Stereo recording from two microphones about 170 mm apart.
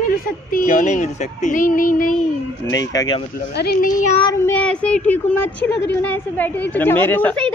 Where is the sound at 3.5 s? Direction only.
70° left (ahead or behind).